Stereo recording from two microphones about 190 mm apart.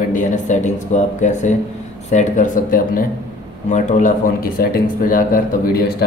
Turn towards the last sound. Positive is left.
turn(degrees=50)  # may be behind; listen again after turning